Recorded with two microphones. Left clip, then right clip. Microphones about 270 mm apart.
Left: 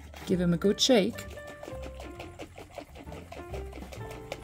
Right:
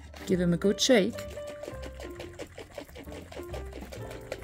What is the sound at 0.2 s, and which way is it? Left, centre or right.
Speech, centre.